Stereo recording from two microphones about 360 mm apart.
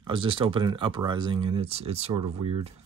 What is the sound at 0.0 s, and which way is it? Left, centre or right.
Speech, centre.